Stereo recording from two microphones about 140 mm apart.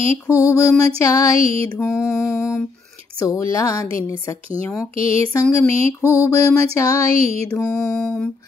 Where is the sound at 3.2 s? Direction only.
25° left (ahead or behind).